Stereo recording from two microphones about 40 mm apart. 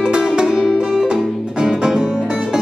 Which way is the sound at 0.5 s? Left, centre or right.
Centre.